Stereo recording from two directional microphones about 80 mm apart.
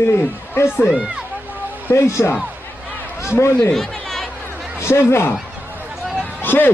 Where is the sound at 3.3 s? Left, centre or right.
Left.